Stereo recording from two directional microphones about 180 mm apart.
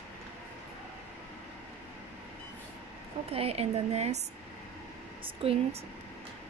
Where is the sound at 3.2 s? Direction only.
35° right (ahead or behind).